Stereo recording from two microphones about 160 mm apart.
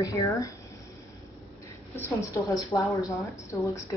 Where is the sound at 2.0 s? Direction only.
20° left (ahead or behind).